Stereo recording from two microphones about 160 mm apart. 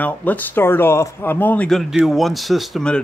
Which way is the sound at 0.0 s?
10° left (ahead or behind).